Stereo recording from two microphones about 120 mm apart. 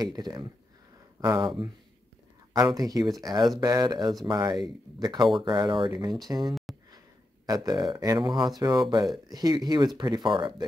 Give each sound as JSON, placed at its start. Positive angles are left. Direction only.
{"t": 0.0, "sound": "speech", "side_deg": -35}
{"t": 2.5, "sound": "speech", "side_deg": -35}
{"t": 4.6, "sound": "speech", "side_deg": 0}
{"t": 5.0, "sound": "speech", "side_deg": -35}